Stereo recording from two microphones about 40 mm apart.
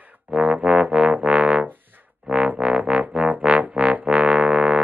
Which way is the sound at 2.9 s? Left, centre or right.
Right.